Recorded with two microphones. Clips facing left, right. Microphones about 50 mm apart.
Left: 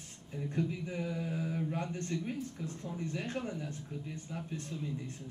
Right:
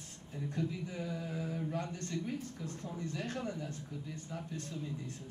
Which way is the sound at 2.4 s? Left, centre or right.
Right.